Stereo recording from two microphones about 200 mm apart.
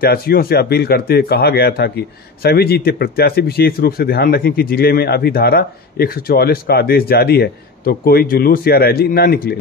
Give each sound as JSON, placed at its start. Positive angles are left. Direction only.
{"t": 0.0, "sound": "speech", "side_deg": 50}